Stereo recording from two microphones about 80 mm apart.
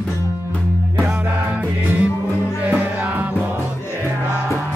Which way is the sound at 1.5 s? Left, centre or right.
Centre.